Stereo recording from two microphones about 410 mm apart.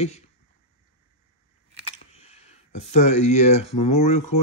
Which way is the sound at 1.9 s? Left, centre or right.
Centre.